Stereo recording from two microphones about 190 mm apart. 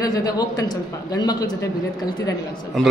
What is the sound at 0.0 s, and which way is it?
A man's voice, 20° left (ahead or behind).